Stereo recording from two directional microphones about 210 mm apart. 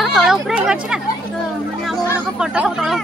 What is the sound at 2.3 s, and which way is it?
Speech, 5° right (ahead or behind).